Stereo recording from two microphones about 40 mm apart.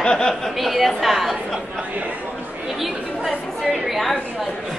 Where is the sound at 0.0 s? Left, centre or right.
Centre.